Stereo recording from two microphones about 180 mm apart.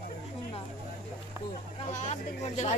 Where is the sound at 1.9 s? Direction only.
40° left (ahead or behind).